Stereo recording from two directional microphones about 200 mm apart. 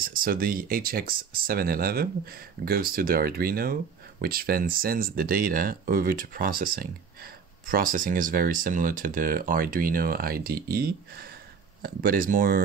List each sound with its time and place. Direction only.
0.0 s speech: 45° right (ahead or behind)